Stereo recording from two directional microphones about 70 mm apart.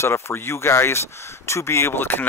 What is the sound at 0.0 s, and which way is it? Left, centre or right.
Speech, left.